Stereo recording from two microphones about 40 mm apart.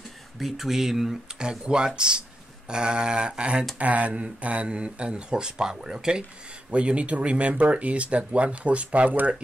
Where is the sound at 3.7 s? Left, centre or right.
Right; by 6.2 s centre.